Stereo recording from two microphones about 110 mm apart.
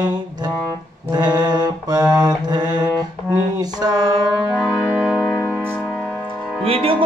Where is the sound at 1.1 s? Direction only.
40° right (ahead or behind).